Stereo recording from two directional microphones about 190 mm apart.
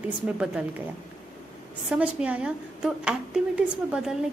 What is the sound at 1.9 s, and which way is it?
A woman's voice, 5° right (ahead or behind).